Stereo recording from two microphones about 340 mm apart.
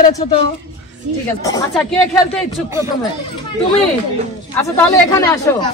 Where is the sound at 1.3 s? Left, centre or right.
Centre.